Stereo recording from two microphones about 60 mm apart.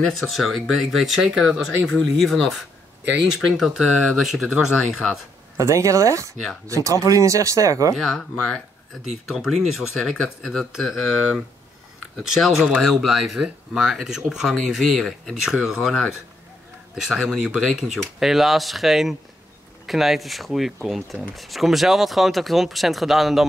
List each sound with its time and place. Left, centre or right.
0.3 s speech: centre
1.8 s speech: left
2.1 s speech: centre
5.6 s speech: right
7.9 s speech: centre
12.2 s speech: centre
15.4 s speech: centre